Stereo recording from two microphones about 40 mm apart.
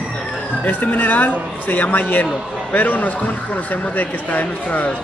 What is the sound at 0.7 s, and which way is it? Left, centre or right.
Speech, left.